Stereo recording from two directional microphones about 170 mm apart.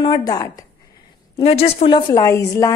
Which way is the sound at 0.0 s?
25° left (ahead or behind).